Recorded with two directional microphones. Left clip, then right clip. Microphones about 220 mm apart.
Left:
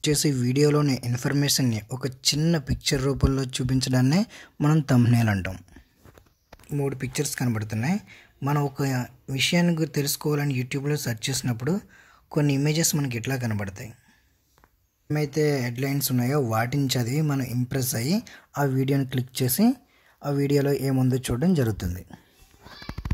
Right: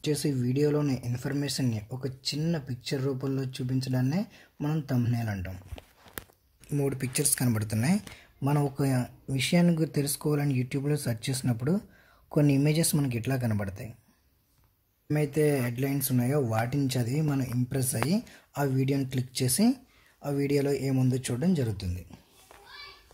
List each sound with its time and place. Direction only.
0.0 s speech: 20° left (ahead or behind)
6.7 s speech: 5° left (ahead or behind)
15.0 s speech: 10° left (ahead or behind); by 22.2 s 30° left (ahead or behind)